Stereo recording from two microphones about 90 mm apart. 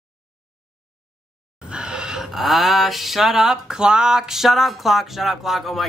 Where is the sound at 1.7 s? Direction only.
10° right (ahead or behind).